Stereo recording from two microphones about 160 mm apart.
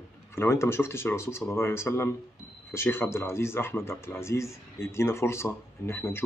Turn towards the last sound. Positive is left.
turn(degrees=15)  # may be behind; listen again after turning